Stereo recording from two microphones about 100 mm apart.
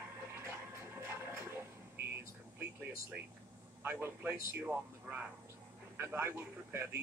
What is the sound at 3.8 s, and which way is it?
Speech, 20° right (ahead or behind).